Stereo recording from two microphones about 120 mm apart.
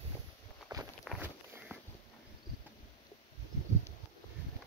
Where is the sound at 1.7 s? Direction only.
20° right (ahead or behind).